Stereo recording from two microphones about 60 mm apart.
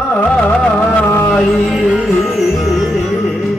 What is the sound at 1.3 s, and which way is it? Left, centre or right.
Music, centre.